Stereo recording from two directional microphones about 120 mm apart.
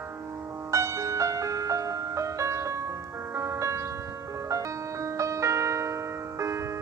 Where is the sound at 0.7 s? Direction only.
25° right (ahead or behind).